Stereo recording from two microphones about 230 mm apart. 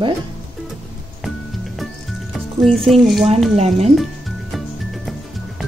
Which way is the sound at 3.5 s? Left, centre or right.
Right.